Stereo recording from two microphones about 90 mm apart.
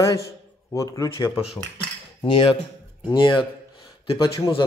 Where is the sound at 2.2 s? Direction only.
85° left.